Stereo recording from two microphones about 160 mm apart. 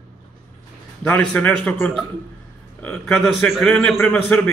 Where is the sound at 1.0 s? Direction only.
10° left (ahead or behind).